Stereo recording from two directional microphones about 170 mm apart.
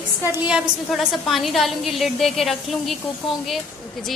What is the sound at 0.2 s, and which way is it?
Speech, 10° right (ahead or behind).